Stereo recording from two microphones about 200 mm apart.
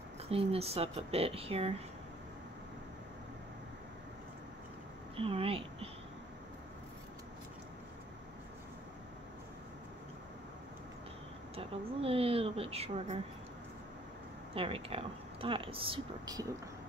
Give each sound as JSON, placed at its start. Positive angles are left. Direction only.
{"t": 0.3, "sound": "speech", "side_deg": -30}
{"t": 5.1, "sound": "a woman's voice", "side_deg": -30}
{"t": 11.5, "sound": "speech", "side_deg": -30}
{"t": 14.5, "sound": "speech", "side_deg": -30}